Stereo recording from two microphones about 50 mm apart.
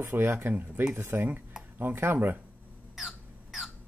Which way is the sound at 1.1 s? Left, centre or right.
Right.